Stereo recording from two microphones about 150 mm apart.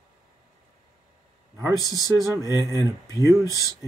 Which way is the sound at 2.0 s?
25° left (ahead or behind).